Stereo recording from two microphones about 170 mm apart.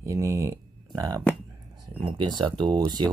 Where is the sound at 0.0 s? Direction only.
15° right (ahead or behind).